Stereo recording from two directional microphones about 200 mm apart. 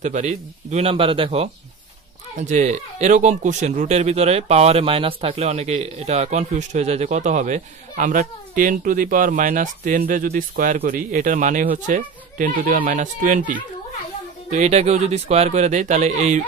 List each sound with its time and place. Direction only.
0.0 s speech: 35° right (ahead or behind)